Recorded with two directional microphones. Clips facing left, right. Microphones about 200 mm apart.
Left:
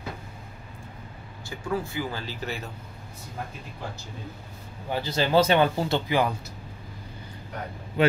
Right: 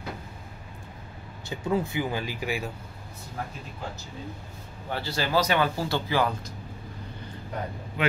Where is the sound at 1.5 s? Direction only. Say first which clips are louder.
Right 3 dB; 20° right (ahead or behind).